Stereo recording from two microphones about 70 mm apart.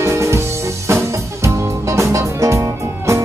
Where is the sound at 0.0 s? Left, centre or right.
Right.